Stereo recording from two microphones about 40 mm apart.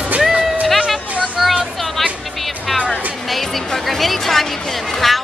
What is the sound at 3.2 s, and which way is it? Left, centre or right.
Speech, centre.